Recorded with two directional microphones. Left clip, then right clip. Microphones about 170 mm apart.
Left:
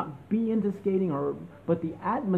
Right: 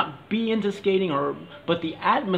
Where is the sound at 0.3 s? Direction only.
10° right (ahead or behind).